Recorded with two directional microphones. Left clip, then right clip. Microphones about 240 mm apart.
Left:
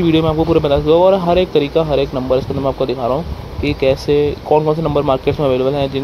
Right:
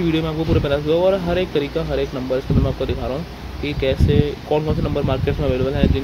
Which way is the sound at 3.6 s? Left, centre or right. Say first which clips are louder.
Left 6 dB; centre.